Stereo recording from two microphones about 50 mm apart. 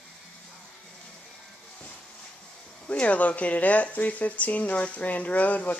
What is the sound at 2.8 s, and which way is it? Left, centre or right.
Speech, left.